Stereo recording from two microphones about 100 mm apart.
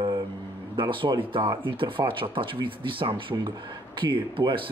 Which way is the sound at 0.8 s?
55° right (ahead or behind).